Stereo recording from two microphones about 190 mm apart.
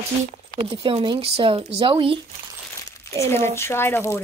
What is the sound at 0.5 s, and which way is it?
Speech, 25° right (ahead or behind).